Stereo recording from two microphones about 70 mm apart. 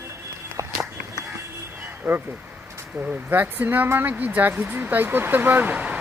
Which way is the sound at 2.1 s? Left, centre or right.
Right.